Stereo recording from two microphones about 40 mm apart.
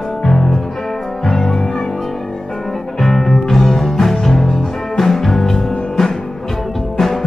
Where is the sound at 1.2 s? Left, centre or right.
Centre.